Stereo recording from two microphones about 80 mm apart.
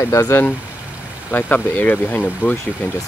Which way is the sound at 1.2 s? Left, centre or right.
Left.